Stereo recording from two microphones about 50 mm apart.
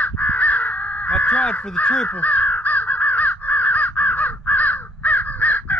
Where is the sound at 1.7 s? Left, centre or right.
Left.